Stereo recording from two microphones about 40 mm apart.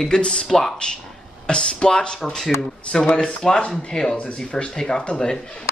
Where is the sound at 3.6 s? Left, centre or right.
Left.